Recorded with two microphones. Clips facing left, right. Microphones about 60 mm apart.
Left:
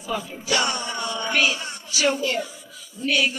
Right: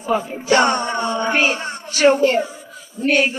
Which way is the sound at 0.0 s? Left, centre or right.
Right.